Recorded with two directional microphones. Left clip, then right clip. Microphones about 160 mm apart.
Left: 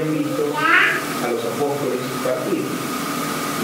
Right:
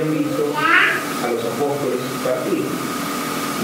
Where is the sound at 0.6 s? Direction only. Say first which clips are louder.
Even; 30° left (ahead or behind).